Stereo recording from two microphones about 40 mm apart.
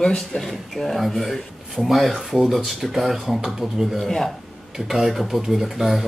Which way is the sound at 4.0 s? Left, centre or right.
Centre.